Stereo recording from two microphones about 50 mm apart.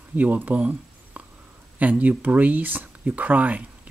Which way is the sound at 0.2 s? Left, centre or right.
Right.